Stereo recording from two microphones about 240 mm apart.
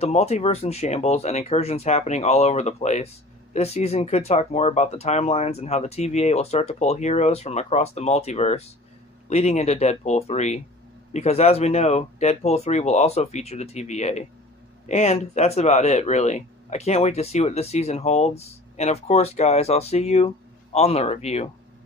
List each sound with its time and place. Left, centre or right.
0.0 s speech: left